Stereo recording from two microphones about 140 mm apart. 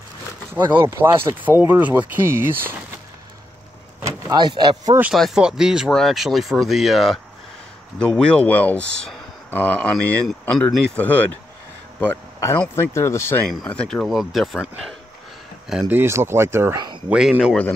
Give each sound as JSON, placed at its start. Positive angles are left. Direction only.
{"t": 0.8, "sound": "speech", "side_deg": -15}
{"t": 4.0, "sound": "speech", "side_deg": -25}
{"t": 5.1, "sound": "speech", "side_deg": 0}
{"t": 13.5, "sound": "speech", "side_deg": 5}
{"t": 15.9, "sound": "speech", "side_deg": -15}
{"t": 17.1, "sound": "speech", "side_deg": -5}